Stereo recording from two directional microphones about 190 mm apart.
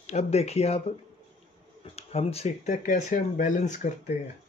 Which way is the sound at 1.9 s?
35° left (ahead or behind).